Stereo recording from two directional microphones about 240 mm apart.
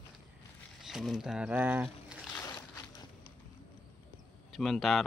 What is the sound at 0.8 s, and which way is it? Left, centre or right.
Speech, centre.